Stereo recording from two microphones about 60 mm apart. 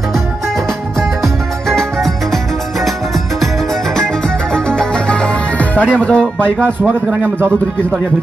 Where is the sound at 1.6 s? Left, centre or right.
Centre.